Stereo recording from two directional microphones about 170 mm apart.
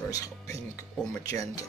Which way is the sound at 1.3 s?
20° left (ahead or behind).